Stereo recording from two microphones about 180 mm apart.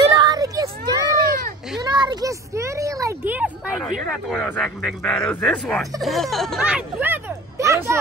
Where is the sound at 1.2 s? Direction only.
50° right (ahead or behind).